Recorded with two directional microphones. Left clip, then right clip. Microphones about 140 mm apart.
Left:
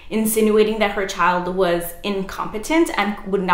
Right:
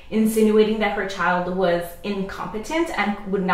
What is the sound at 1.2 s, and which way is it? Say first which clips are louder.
A woman's voice: left 4 dB; 20° left (ahead or behind).